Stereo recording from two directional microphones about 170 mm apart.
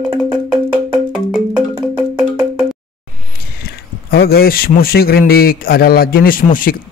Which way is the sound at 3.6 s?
65° left (ahead or behind).